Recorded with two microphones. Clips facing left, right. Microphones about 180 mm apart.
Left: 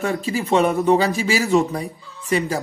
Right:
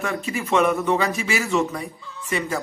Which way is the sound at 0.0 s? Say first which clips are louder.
Left 4 dB; 35° left (ahead or behind).